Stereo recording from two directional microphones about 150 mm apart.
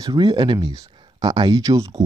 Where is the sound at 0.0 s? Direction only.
25° right (ahead or behind).